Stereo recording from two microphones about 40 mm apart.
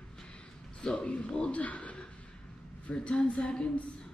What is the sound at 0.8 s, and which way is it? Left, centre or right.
Speech, left.